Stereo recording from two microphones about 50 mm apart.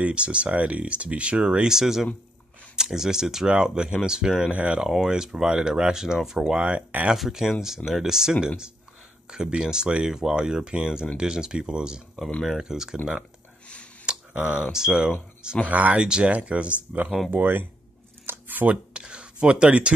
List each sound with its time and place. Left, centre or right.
0.0 s speech: right
1.7 s speech: centre
4.5 s speech: right
4.8 s speech: centre
7.2 s speech: centre
14.1 s tick: centre
14.5 s speech: centre
15.6 s speech: right
16.0 s speech: centre
17.3 s speech: right
18.2 s shuffling cards: right
18.7 s speech: centre